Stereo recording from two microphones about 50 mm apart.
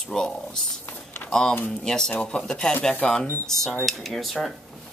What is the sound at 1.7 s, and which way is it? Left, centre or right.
Speech, centre.